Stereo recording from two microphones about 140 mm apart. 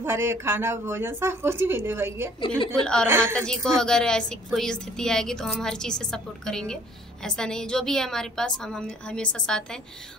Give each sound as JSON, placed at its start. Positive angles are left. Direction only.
{"t": 0.0, "sound": "speech", "side_deg": -15}
{"t": 2.7, "sound": "a woman's voice", "side_deg": 5}
{"t": 3.1, "sound": "speech", "side_deg": -15}
{"t": 3.3, "sound": "a woman's voice", "side_deg": 5}